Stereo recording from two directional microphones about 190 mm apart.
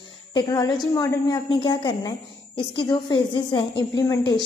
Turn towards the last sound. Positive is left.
turn(degrees=20)  # may be behind; listen again after turning